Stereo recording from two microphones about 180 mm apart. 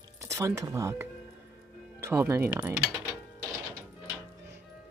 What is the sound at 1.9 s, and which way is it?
Speech, 15° right (ahead or behind).